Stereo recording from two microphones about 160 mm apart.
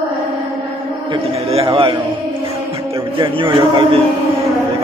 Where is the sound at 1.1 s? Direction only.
35° right (ahead or behind).